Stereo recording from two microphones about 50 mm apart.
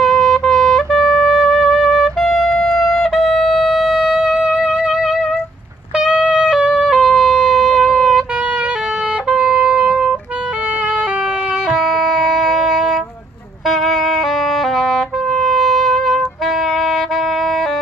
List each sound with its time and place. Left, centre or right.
0.0 s music: centre
2.5 s wind instrument: centre
2.8 s music: centre
9.3 s music: centre
11.7 s music: centre